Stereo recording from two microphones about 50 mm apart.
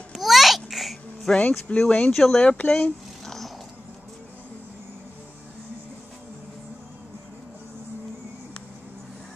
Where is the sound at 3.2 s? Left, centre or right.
Centre.